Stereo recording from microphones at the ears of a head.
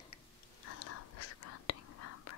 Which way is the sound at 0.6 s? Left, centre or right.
Left.